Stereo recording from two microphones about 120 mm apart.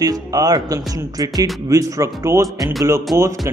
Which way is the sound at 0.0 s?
30° right (ahead or behind).